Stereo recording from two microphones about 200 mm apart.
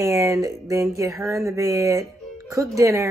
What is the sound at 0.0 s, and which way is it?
A woman's voice, 15° right (ahead or behind).